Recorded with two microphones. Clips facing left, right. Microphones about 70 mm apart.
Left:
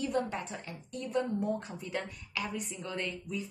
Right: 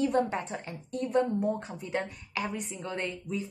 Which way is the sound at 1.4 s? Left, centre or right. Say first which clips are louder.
Right 3 dB; right.